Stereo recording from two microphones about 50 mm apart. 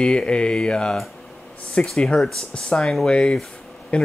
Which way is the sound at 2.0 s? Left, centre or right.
Left.